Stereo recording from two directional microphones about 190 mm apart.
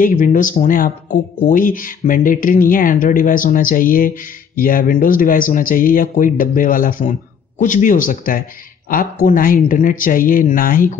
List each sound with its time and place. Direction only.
0.0 s speech: 45° left (ahead or behind)